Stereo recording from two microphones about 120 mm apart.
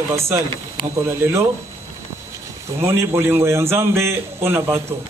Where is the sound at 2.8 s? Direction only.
20° right (ahead or behind).